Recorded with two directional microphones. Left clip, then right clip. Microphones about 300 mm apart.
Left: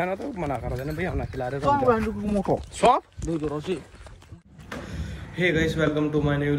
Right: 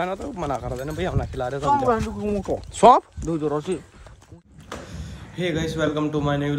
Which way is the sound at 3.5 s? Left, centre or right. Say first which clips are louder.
Right 4 dB; right.